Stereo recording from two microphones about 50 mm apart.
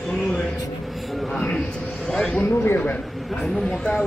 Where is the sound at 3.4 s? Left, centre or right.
Centre.